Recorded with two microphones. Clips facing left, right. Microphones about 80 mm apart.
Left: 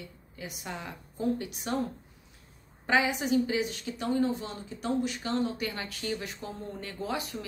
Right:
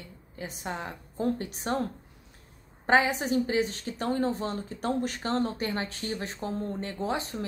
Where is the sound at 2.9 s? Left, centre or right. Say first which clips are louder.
Right 2 dB; right.